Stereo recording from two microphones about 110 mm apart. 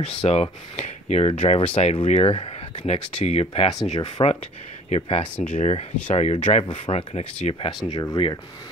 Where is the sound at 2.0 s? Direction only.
90° left.